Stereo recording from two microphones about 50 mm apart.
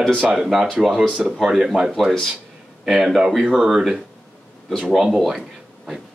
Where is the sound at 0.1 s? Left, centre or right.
Right.